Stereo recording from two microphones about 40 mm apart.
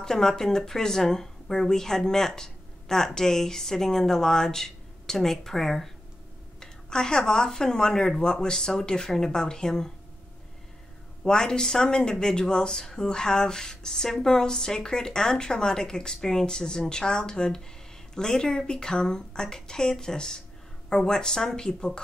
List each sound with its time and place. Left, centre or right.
0.0 s speech: centre
6.6 s speech: centre
11.2 s speech: centre